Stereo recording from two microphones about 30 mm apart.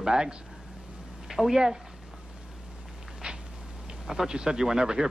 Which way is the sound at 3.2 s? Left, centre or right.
Right.